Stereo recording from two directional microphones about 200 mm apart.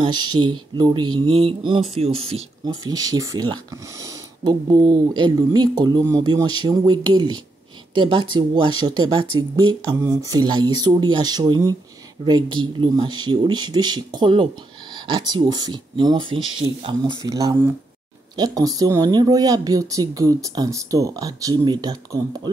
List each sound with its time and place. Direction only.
0.0 s speech: 25° right (ahead or behind)
2.7 s speech: 20° right (ahead or behind)